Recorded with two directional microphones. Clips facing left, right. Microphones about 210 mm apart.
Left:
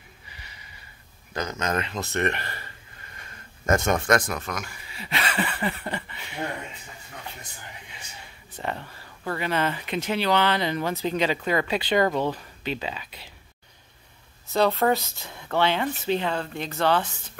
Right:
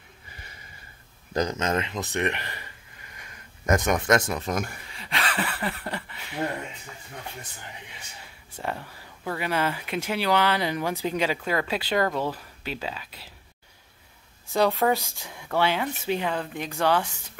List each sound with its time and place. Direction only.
0.3 s snort: 50° right (ahead or behind)
1.3 s speech: 30° right (ahead or behind)
4.9 s a sound: 5° left (ahead or behind)
8.5 s speech: 5° right (ahead or behind)
14.5 s speech: 15° right (ahead or behind)